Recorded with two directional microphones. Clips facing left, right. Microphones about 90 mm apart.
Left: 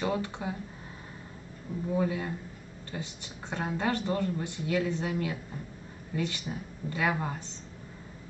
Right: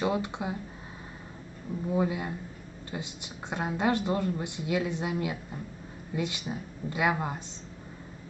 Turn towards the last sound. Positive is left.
turn(degrees=-15)  # may be behind; listen again after turning